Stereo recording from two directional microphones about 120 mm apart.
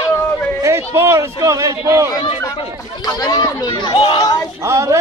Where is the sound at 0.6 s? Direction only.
25° right (ahead or behind).